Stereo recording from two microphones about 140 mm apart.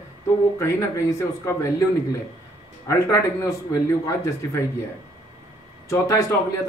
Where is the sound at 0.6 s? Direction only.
20° left (ahead or behind).